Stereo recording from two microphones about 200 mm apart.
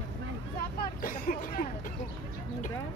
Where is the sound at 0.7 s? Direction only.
45° left (ahead or behind).